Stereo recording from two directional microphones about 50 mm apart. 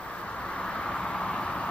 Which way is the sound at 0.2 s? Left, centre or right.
Left.